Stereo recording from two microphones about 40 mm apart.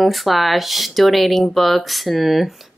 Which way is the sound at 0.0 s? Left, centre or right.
Centre.